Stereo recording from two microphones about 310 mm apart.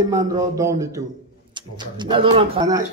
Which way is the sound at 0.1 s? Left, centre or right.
Centre.